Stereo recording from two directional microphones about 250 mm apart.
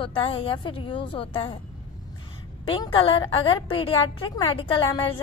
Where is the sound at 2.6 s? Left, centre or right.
Left.